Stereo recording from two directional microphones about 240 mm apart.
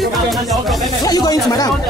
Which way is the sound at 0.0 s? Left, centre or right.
Centre.